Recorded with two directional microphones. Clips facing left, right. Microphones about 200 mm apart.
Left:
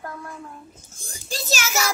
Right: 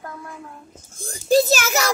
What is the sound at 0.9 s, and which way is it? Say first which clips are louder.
Speech: right 18 dB; 55° right (ahead or behind).